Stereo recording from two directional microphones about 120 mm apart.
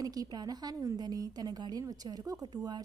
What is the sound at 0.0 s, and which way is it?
A woman's voice, 30° right (ahead or behind).